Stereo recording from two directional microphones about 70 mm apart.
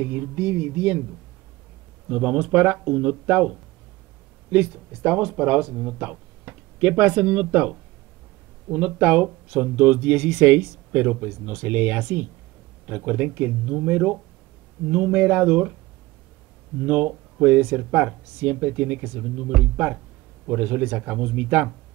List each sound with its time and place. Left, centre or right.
0.0 s speech: right
2.0 s speech: centre
8.7 s speech: right
16.8 s speech: right